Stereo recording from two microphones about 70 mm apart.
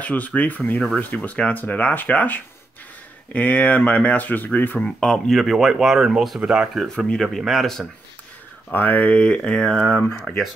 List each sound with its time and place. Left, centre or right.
0.0 s speech: left
5.0 s speech: centre
7.0 s speech: centre
8.7 s speech: left; by 10.1 s centre